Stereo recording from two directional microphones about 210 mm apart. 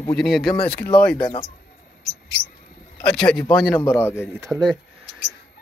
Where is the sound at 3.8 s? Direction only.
10° left (ahead or behind).